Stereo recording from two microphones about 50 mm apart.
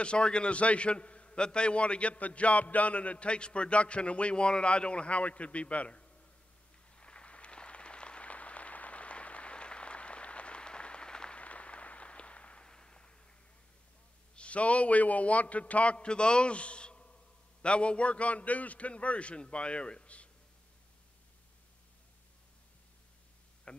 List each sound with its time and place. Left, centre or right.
0.0 s a man's voice: centre
7.0 s a sound: left
14.3 s a man's voice: left
23.7 s speech: centre